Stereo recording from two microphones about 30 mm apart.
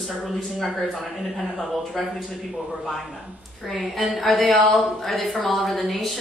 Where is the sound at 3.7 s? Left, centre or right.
Centre.